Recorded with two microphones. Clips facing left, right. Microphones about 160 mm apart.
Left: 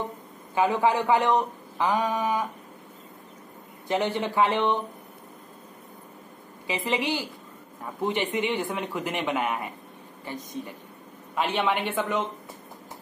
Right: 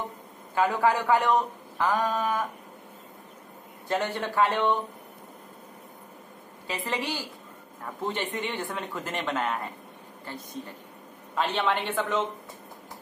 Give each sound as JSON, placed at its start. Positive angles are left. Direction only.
{"t": 0.6, "sound": "a man's voice", "side_deg": 20}
{"t": 3.8, "sound": "a man's voice", "side_deg": 15}
{"t": 6.7, "sound": "a man's voice", "side_deg": 15}